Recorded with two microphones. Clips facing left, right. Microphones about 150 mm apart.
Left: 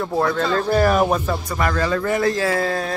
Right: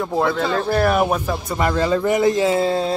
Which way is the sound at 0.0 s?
5° right (ahead or behind).